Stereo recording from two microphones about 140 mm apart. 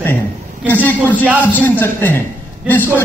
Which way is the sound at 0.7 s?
10° left (ahead or behind).